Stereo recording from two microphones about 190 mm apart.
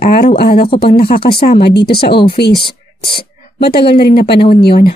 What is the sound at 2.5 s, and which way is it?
Speech, 25° left (ahead or behind).